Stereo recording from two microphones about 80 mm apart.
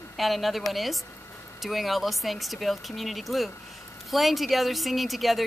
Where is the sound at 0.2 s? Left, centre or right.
Centre.